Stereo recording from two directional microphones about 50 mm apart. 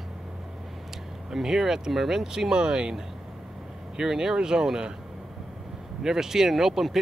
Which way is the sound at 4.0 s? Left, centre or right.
Centre.